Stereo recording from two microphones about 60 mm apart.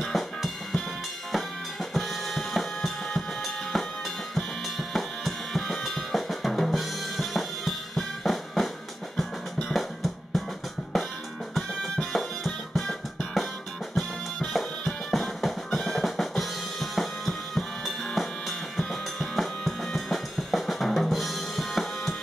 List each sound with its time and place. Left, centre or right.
0.1 s drum kit: centre
1.3 s drum: centre
12.1 s music: centre
18.8 s drum kit: centre